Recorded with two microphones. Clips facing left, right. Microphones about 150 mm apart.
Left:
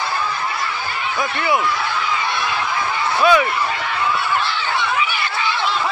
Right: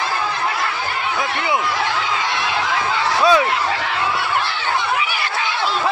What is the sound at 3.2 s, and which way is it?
Speech, 25° right (ahead or behind).